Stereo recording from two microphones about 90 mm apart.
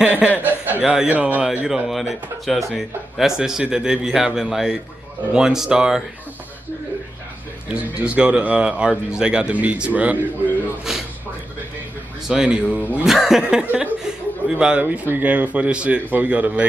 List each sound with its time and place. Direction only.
0.0 s chuckle: 15° right (ahead or behind)
0.9 s a man's voice: 15° right (ahead or behind)
7.7 s a man's voice: 15° right (ahead or behind)
12.3 s a man's voice: 10° right (ahead or behind)